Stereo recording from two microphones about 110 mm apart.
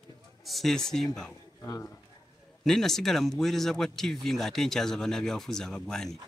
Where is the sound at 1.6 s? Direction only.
25° left (ahead or behind).